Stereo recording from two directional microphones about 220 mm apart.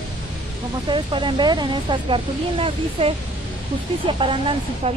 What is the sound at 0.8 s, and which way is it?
Speech, 20° right (ahead or behind).